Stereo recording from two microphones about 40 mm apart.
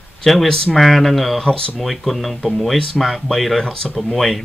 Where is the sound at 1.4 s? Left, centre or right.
Left.